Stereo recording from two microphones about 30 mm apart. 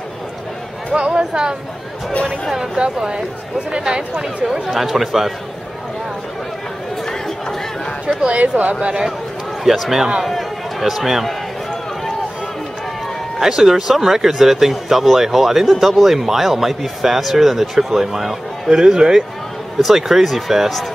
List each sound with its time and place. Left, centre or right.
0.9 s speech: right
2.5 s speech: right
4.7 s speech: centre
7.1 s chatter: left
8.3 s speech: right
9.7 s speech: centre
10.2 s run: centre
10.9 s speech: centre
13.4 s speech: centre
18.7 s speech: right
19.8 s speech: centre